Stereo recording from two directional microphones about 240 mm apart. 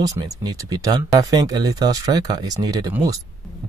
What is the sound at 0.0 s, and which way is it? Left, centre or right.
Speech, centre.